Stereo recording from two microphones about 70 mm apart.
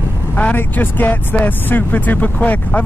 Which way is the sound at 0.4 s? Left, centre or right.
Left.